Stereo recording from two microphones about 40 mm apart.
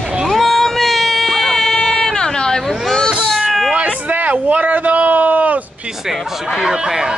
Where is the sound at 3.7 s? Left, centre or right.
Right.